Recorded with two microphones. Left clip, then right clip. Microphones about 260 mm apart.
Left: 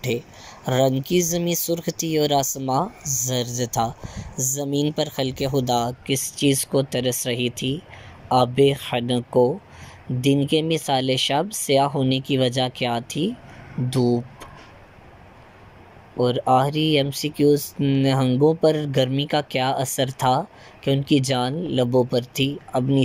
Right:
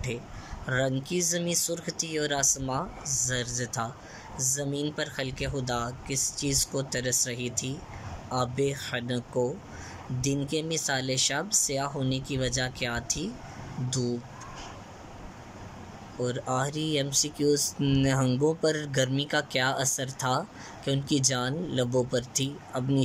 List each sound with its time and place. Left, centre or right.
0.7 s speech: centre
3.0 s speech: right
3.5 s speech: centre
10.5 s speech: centre
16.2 s speech: centre